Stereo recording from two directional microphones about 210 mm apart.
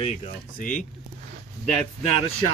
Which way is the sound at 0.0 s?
30° left (ahead or behind).